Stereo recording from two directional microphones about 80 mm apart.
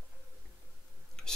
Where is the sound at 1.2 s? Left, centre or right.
Centre.